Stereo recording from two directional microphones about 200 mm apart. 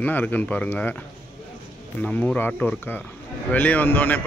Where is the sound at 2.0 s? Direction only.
10° left (ahead or behind).